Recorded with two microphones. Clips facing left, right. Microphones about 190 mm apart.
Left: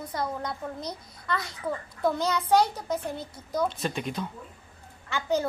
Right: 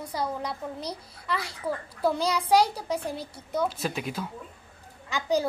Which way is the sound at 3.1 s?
30° right (ahead or behind).